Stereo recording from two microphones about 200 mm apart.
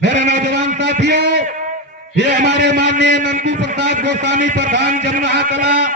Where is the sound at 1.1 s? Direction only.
55° right (ahead or behind).